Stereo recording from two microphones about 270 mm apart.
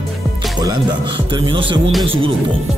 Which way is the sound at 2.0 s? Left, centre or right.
Centre.